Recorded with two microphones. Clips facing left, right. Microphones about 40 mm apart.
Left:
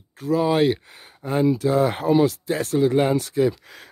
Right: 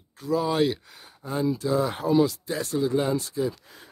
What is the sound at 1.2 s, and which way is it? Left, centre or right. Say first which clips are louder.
Speech: left 6 dB; left.